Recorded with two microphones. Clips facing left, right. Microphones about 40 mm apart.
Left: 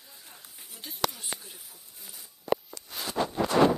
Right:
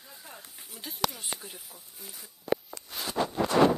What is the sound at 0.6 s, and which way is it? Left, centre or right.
Speech, centre.